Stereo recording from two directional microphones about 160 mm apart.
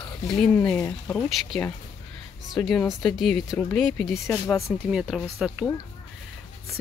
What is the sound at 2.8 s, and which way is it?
Speech, centre (ahead or behind).